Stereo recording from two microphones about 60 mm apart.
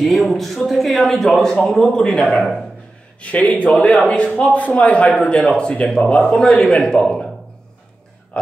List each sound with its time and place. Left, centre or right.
0.0 s a man's voice: centre